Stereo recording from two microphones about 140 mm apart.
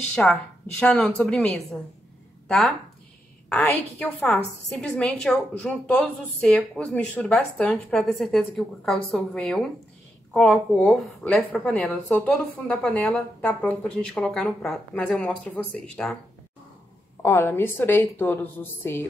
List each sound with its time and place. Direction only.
0.1 s a woman's voice: 5° left (ahead or behind)
4.6 s a woman's voice: 5° left (ahead or behind)
17.2 s a woman's voice: 20° left (ahead or behind)